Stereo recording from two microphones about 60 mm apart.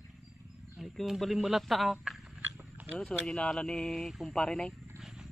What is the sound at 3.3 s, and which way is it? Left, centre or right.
Speech, centre.